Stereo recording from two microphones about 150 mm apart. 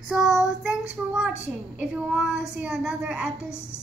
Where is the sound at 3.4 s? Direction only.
15° left (ahead or behind).